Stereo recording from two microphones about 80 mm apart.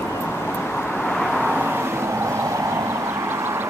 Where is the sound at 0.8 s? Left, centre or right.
Left.